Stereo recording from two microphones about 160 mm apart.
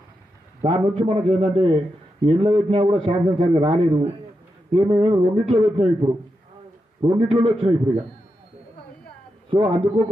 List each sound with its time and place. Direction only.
0.6 s a man's voice: 35° right (ahead or behind)
9.5 s a man's voice: 30° right (ahead or behind)